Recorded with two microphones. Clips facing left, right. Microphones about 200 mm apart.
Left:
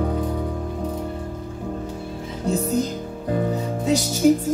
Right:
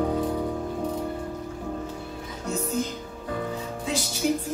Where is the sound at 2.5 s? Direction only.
35° left (ahead or behind).